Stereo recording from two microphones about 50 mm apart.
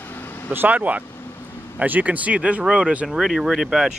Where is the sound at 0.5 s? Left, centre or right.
Right.